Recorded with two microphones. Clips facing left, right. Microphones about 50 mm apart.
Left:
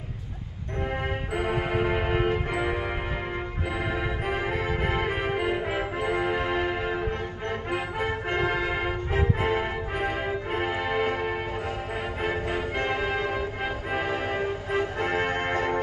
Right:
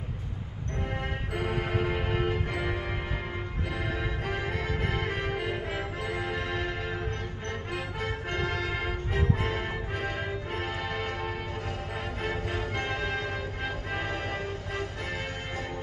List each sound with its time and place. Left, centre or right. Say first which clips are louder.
1.3 s music: left 4 dB; centre
3.9 s music: left 4 dB; centre; by 15.7 s left